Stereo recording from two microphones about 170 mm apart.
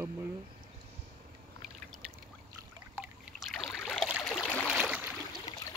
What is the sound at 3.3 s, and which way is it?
Boat, centre (ahead or behind).